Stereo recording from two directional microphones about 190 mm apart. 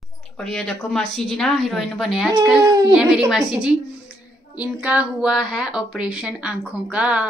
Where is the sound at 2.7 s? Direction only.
20° right (ahead or behind).